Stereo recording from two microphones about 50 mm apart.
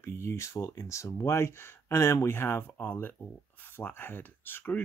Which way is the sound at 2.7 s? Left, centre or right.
Left.